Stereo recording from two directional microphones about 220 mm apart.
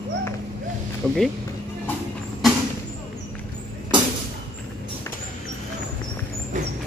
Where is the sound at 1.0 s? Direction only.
5° left (ahead or behind).